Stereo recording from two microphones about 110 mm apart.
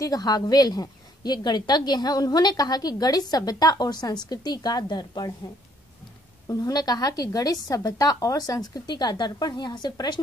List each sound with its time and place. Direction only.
0.0 s a woman's voice: 35° left (ahead or behind)
6.4 s a woman's voice: 35° left (ahead or behind)